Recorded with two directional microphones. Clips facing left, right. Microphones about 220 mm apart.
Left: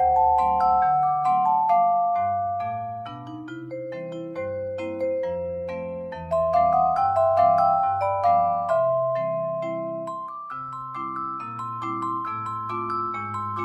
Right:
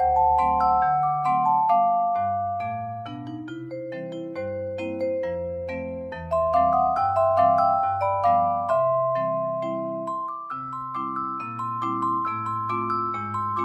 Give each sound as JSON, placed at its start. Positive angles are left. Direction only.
{"t": 0.1, "sound": "music", "side_deg": 15}
{"t": 6.3, "sound": "music", "side_deg": 15}
{"t": 11.9, "sound": "music", "side_deg": 15}